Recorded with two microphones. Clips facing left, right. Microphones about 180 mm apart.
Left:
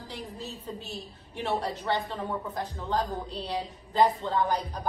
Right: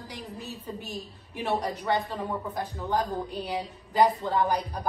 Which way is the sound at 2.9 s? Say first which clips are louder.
Right 2 dB; 15° right (ahead or behind).